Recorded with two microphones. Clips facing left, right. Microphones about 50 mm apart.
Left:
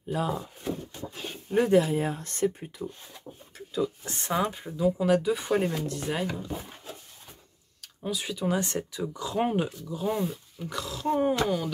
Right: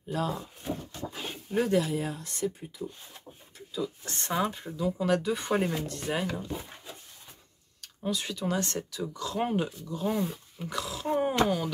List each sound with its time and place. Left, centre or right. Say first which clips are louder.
0.1 s speech: left 2 dB; centre
1.5 s speech: left 4 dB; left
4.0 s speech: left 2 dB; centre
7.8 s speech: even; centre